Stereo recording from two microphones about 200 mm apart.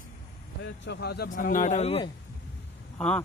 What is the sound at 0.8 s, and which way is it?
Speech, 60° left (ahead or behind).